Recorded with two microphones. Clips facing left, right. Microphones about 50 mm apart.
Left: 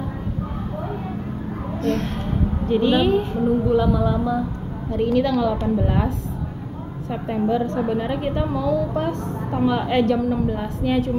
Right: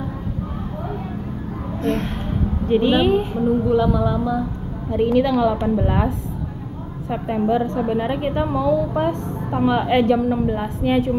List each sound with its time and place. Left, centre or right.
1.8 s a sound: right
2.7 s a woman's voice: right
3.6 s a woman's voice: centre
4.9 s a woman's voice: centre